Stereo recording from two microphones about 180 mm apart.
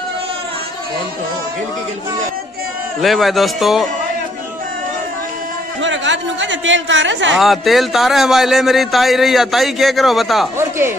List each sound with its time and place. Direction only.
3.0 s a man's voice: centre (ahead or behind)
5.8 s speech: 90° right
7.3 s a man's voice: centre (ahead or behind)